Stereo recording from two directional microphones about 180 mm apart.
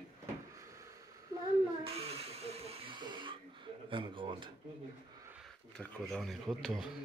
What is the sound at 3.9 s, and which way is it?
Speech, 30° right (ahead or behind).